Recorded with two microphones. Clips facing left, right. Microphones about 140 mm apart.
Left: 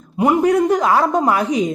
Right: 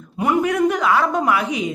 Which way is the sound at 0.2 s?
30° left (ahead or behind).